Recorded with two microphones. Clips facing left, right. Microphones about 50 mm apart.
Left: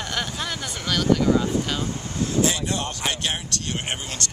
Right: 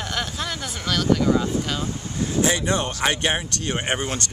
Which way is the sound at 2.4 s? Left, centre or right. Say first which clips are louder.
Right 5 dB; right.